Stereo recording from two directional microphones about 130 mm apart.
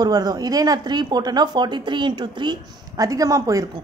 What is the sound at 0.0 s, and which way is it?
A woman's voice, 30° right (ahead or behind).